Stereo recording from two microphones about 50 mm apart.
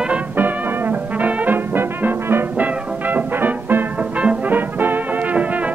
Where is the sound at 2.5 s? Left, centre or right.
Right.